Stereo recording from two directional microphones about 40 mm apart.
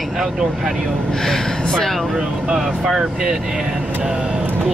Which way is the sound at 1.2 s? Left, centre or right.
Centre.